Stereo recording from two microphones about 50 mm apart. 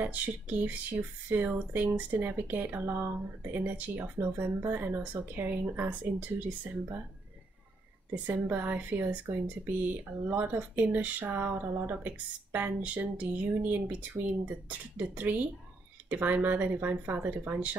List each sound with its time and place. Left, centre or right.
0.0 s speech: right
8.1 s a woman's voice: right
8.5 s speech: right